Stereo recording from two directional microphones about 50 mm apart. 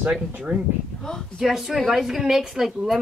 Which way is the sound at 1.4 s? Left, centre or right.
Centre.